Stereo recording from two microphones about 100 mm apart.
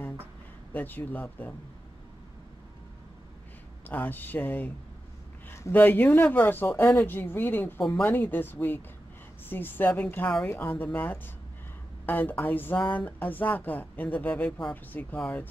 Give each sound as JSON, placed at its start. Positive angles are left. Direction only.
{"t": 0.7, "sound": "speech", "side_deg": 20}
{"t": 3.8, "sound": "speech", "side_deg": 15}